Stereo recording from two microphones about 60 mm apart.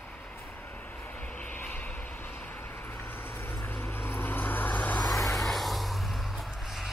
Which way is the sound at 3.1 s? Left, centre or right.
Left.